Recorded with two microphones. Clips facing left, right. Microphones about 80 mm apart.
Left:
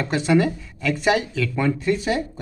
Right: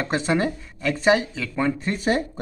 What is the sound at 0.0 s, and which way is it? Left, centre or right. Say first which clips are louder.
Speech: left 3 dB; right.